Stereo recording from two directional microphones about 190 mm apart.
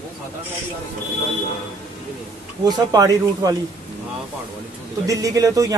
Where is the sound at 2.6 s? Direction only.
20° right (ahead or behind).